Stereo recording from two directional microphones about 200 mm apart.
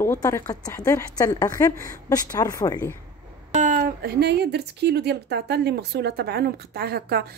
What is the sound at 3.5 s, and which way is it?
Speech, 40° right (ahead or behind).